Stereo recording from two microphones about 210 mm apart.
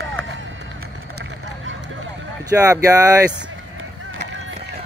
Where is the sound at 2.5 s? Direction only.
15° right (ahead or behind).